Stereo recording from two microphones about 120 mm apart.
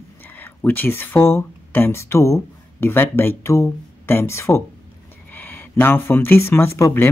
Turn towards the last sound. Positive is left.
turn(degrees=25)  # may be behind; listen again after turning